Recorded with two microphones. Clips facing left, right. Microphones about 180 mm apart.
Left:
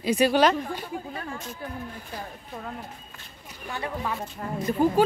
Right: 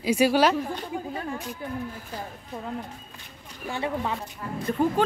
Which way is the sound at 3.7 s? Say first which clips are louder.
Right 3 dB; 25° right (ahead or behind).